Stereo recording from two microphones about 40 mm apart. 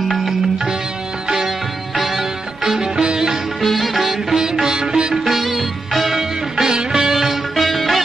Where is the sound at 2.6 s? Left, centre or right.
Centre.